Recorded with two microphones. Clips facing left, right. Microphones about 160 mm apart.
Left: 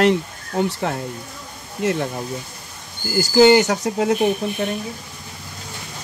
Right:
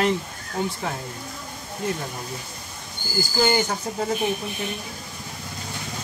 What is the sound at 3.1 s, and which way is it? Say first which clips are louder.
Speech: left 9 dB; 75° left (ahead or behind).